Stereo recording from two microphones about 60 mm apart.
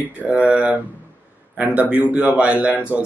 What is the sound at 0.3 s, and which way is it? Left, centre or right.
Speech, right.